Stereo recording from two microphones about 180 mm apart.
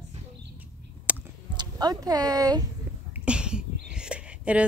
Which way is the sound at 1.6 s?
20° right (ahead or behind).